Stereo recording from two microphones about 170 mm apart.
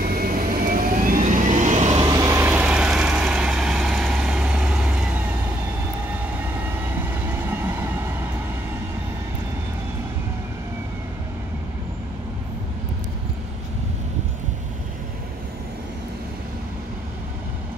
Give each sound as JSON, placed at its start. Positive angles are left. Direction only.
{"t": 0.0, "sound": "vehicle", "side_deg": -60}
{"t": 2.0, "sound": "vehicle", "side_deg": -20}
{"t": 7.4, "sound": "train", "side_deg": -15}